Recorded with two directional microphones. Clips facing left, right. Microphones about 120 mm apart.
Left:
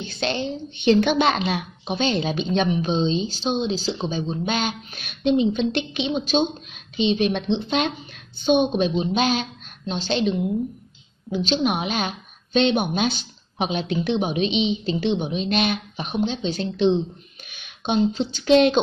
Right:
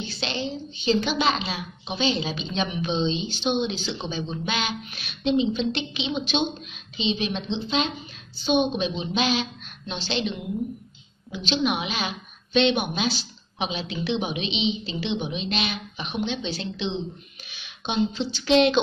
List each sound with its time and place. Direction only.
0.0 s a woman's voice: 50° left (ahead or behind)